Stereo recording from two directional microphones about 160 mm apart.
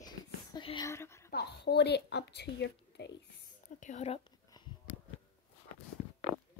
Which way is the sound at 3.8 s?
50° left (ahead or behind).